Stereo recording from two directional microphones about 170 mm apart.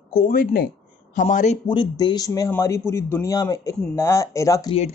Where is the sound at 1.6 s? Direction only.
25° left (ahead or behind).